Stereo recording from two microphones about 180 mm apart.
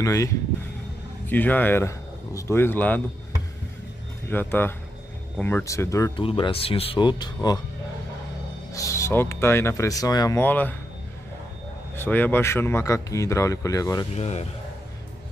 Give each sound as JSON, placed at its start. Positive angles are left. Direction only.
{"t": 0.0, "sound": "speech", "side_deg": 20}
{"t": 4.3, "sound": "speech", "side_deg": 10}
{"t": 6.1, "sound": "speech", "side_deg": 30}
{"t": 8.7, "sound": "speech", "side_deg": 15}
{"t": 11.9, "sound": "speech", "side_deg": 10}
{"t": 14.1, "sound": "a man's voice", "side_deg": 35}